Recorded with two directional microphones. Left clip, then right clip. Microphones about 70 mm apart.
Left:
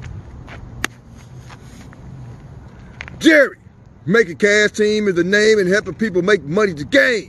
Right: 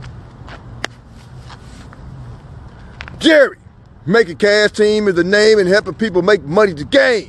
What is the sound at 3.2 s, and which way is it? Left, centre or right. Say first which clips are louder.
A man's voice: right 2 dB; left.